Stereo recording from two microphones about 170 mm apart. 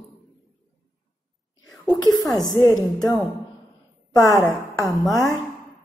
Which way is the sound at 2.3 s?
20° left (ahead or behind).